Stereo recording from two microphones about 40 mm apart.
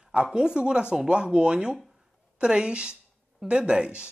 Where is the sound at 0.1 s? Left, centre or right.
Right.